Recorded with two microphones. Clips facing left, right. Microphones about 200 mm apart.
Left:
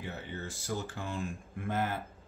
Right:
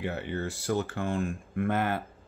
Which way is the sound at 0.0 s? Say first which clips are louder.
Right 8 dB; 65° right (ahead or behind).